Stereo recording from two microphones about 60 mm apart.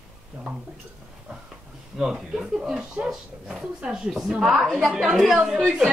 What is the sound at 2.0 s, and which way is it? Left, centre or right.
Speech, centre.